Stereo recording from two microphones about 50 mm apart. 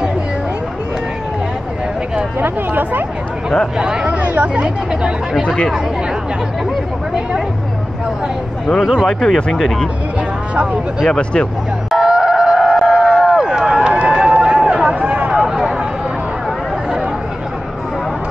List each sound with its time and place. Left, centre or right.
2.4 s speech: right
3.7 s speech: centre
4.4 s speech: right
5.4 s speech: left
8.9 s speech: centre
11.1 s speech: left
11.9 s fowl: centre
12.8 s a sound: centre
13.9 s run: right
14.7 s a sound: right
15.3 s a sound: centre